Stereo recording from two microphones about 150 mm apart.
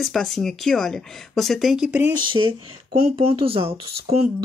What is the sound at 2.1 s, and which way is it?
Speech, 35° right (ahead or behind).